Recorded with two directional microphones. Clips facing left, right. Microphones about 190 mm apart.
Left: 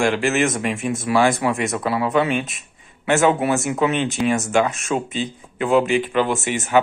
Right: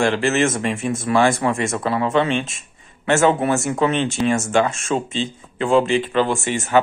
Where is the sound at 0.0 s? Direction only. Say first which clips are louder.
Right 1 dB; 15° left (ahead or behind).